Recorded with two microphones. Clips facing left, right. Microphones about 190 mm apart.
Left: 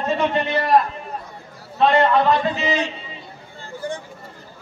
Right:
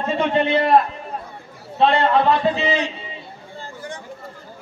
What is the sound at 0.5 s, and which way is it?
Speech, 25° right (ahead or behind).